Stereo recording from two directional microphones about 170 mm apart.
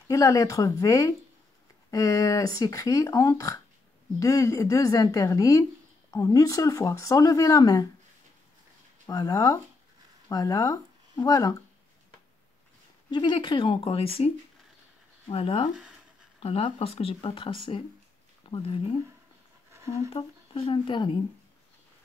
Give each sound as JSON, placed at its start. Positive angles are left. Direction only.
{"t": 0.1, "sound": "speech", "side_deg": 20}
{"t": 9.0, "sound": "speech", "side_deg": 20}
{"t": 13.1, "sound": "speech", "side_deg": 30}
{"t": 19.7, "sound": "a sound", "side_deg": -15}
{"t": 20.1, "sound": "speech", "side_deg": 35}